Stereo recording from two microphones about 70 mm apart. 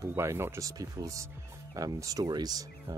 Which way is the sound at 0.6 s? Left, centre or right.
Right.